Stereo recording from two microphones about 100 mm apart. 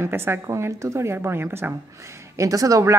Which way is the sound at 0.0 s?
25° right (ahead or behind).